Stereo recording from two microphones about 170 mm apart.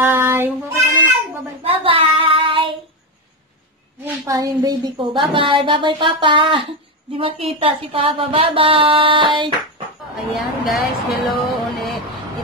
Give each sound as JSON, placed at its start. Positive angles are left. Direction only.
{"t": 0.0, "sound": "child singing", "side_deg": -10}
{"t": 1.6, "sound": "child singing", "side_deg": -35}
{"t": 4.3, "sound": "a woman's voice", "side_deg": -20}
{"t": 10.3, "sound": "speech", "side_deg": 0}